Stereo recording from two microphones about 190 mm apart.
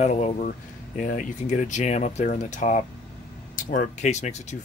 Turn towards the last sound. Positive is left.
turn(degrees=35)  # may be behind; listen again after turning